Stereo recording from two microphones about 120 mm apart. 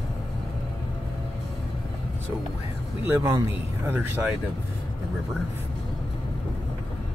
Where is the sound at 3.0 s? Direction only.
20° right (ahead or behind).